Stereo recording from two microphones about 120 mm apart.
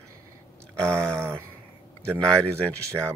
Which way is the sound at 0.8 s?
5° left (ahead or behind).